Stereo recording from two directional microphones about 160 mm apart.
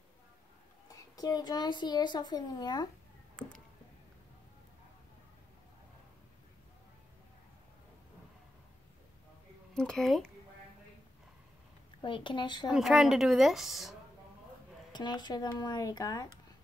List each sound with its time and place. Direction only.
0.8 s a child's voice: 25° left (ahead or behind)
9.8 s a woman's voice: 5° left (ahead or behind)
12.0 s speech: 30° left (ahead or behind)
12.6 s a woman's voice: 5° right (ahead or behind)
14.9 s a child's voice: 25° left (ahead or behind)